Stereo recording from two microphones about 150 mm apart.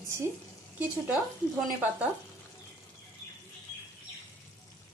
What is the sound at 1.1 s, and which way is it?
Speech, centre (ahead or behind).